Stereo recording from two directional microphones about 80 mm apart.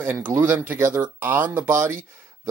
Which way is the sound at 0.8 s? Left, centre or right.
Right.